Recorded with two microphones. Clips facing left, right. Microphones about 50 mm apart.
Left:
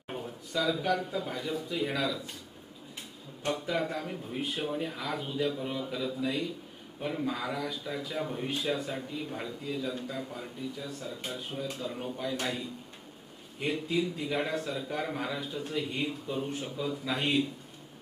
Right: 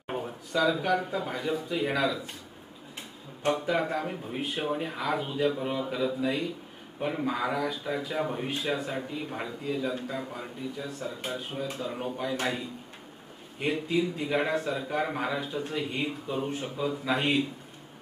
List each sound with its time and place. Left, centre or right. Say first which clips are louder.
0.7 s a man's voice: right 2 dB; right
3.5 s a man's voice: right 4 dB; right
4.4 s a man's voice: right 2 dB; centre
8.9 s a man's voice: right 3 dB; right
14.8 s a man's voice: right 4 dB; right
15.4 s speech: right 2 dB; centre